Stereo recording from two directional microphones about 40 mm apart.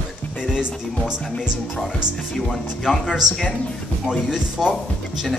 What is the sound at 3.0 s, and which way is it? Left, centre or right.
Music, centre.